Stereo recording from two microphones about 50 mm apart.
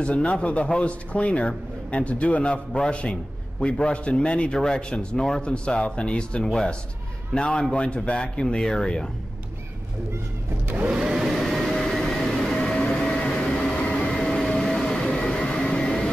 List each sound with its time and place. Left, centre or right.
0.0 s speech: left
10.7 s vacuum cleaner: right
11.0 s vehicle: centre
11.2 s vehicle: centre